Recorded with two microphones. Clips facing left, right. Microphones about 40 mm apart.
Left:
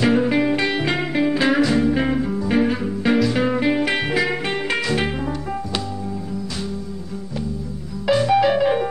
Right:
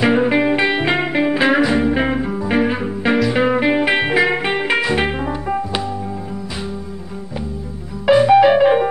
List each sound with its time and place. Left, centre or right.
0.0 s music: right
8.1 s music: right